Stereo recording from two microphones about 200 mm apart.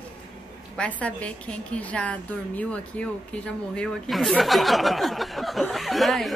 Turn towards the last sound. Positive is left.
turn(degrees=0)  # may be behind; listen again after turning